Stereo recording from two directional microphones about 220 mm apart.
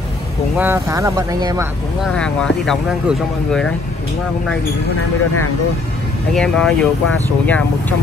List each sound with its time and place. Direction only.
0.6 s speech: 10° right (ahead or behind)
2.0 s speech: 5° left (ahead or behind)
6.3 s speech: 5° left (ahead or behind)